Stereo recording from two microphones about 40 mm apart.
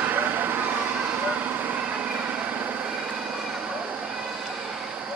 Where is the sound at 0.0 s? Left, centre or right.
Right.